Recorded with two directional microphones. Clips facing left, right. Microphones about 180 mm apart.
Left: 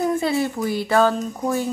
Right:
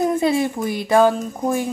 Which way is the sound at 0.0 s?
20° right (ahead or behind).